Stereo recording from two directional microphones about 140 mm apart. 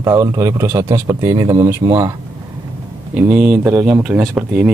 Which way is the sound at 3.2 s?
5° right (ahead or behind).